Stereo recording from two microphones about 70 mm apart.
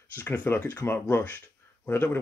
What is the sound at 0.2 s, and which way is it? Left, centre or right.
A man's voice, left.